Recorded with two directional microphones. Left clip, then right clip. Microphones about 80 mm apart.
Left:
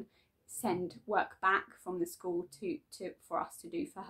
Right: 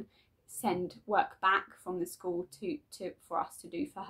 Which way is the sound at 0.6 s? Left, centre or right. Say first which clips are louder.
Right 2 dB; right.